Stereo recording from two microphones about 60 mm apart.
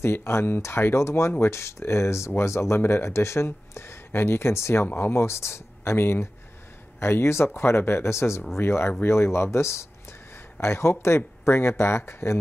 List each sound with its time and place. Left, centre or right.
0.0 s speech: left